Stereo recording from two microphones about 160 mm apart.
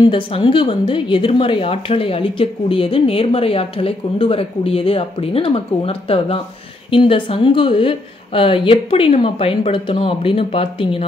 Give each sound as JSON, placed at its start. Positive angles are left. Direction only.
{"t": 0.0, "sound": "speech", "side_deg": 30}